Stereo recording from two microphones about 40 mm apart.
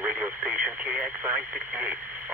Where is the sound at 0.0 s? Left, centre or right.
Right.